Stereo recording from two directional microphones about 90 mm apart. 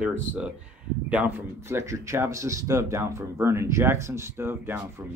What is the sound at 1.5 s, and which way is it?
Speech, 30° right (ahead or behind).